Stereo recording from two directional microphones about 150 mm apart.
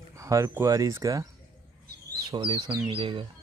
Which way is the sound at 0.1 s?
20° right (ahead or behind).